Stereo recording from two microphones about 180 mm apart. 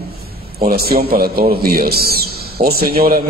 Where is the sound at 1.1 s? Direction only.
55° right (ahead or behind).